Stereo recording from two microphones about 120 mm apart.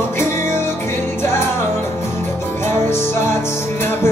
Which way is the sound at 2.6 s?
20° left (ahead or behind).